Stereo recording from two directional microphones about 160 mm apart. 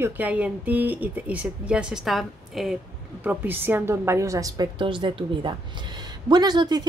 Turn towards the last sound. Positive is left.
turn(degrees=-25)  # may be behind; listen again after turning